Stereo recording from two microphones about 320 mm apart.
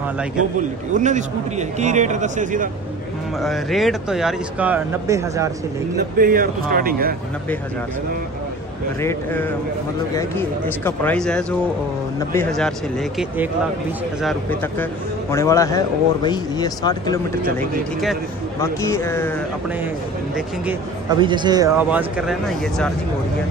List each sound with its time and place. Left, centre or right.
0.9 s a man's voice: right
3.3 s speech: centre
6.1 s a man's voice: right
9.0 s speech: centre
10.8 s speech: centre
14.2 s a man's voice: centre
18.6 s a man's voice: centre
21.2 s speech: centre